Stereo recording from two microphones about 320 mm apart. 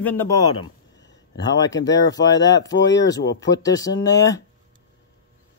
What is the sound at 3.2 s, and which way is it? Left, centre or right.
Speech, left.